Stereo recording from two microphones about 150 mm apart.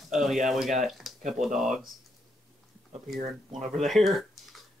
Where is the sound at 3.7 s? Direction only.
Centre (ahead or behind).